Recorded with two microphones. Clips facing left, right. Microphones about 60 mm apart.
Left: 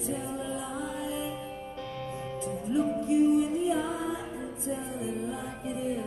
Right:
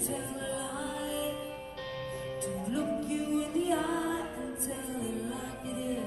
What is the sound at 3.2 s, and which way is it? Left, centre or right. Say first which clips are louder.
Music: left 9 dB; left.